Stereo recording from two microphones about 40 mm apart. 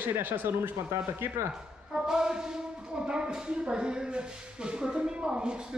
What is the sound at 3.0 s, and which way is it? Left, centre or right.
Speech, centre.